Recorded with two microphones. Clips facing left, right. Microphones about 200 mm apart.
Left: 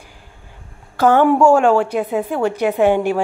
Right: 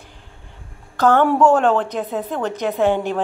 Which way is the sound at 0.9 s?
10° left (ahead or behind).